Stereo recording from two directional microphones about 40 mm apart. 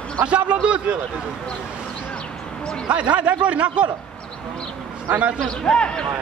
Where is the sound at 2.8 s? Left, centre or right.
Right.